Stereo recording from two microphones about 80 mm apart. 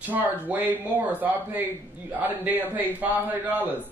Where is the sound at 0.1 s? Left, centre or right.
Right.